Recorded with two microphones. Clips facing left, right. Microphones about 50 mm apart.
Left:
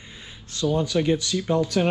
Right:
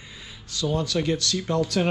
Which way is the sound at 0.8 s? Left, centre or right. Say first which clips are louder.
Left 3 dB; centre.